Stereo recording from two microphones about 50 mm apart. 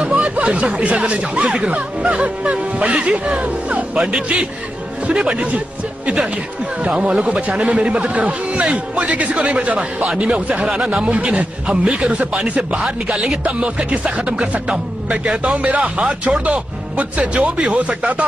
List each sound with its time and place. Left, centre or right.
0.0 s speech: right
6.9 s speech: centre
11.1 s speech: right
12.8 s speech: centre
13.4 s speech: right